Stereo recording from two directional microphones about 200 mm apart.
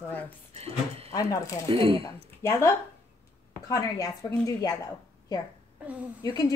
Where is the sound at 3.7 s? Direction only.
15° left (ahead or behind).